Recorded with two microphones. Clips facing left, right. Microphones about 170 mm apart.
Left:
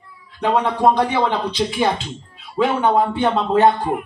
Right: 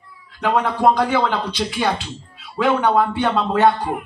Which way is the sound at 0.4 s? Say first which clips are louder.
Left 1 dB; 20° left (ahead or behind).